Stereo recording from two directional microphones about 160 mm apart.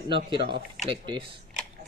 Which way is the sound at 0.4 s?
90° right.